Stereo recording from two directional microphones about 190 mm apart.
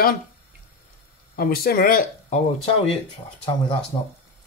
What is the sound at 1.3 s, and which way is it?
Speech, 50° left (ahead or behind).